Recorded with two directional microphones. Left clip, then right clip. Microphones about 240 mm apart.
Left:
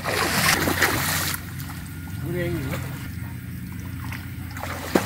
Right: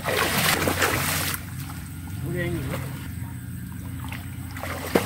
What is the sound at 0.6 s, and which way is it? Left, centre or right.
Boat, right.